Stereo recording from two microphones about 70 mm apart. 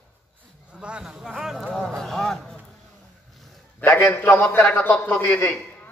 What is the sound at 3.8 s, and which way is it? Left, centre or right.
Speech, left.